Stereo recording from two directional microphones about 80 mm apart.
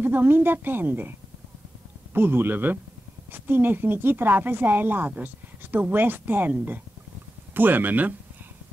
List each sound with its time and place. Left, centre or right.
0.0 s a woman's voice: right
2.1 s a woman's voice: right